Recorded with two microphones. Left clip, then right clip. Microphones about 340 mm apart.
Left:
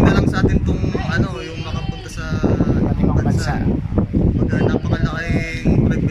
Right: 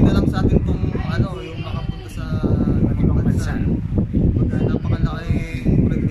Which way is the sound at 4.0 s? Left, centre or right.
Left.